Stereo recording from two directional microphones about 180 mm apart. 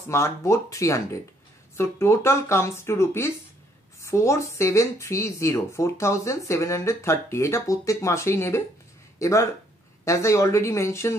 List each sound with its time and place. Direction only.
0.1 s speech: 15° left (ahead or behind)